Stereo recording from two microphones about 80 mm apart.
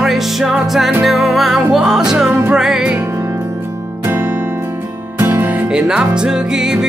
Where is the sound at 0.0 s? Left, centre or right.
Centre.